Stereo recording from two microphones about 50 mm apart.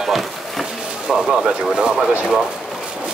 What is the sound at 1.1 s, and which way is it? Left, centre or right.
Speech, centre.